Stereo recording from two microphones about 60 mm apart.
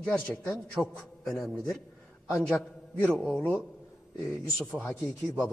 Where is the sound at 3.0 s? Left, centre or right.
Centre.